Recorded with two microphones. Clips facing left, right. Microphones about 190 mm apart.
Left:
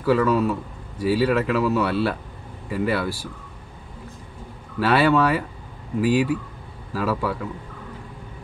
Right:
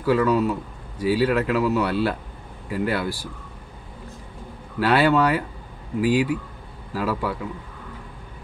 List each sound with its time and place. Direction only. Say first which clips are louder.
0.0 s speech: even; centre (ahead or behind)
4.7 s speech: even; centre (ahead or behind)